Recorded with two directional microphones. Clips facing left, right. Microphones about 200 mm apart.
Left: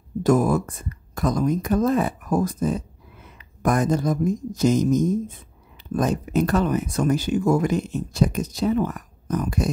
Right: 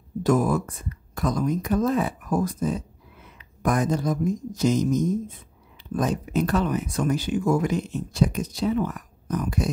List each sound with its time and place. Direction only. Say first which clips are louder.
0.2 s speech: left 3 dB; 45° left (ahead or behind)